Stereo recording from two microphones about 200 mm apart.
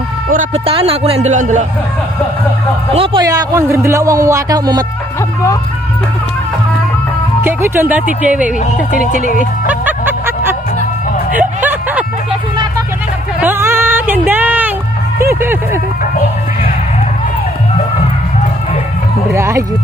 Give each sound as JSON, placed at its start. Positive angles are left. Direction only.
{"t": 0.3, "sound": "a man's voice", "side_deg": -35}
{"t": 2.9, "sound": "speech", "side_deg": -25}
{"t": 7.4, "sound": "speech", "side_deg": -10}
{"t": 9.7, "sound": "music", "side_deg": -10}
{"t": 11.3, "sound": "a sound", "side_deg": -10}
{"t": 13.4, "sound": "a sound", "side_deg": -10}
{"t": 19.3, "sound": "speech", "side_deg": -15}